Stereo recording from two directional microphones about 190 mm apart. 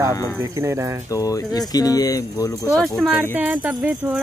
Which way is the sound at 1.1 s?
20° left (ahead or behind).